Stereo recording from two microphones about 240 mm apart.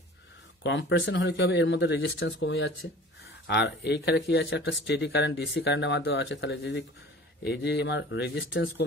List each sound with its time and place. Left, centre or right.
0.7 s speech: left